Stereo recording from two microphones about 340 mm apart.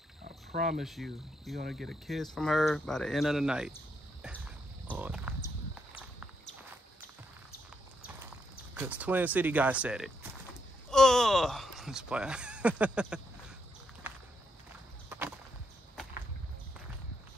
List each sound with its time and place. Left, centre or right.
0.5 s speech: right
0.7 s speech: centre
8.7 s speech: centre
15.0 s a sound: centre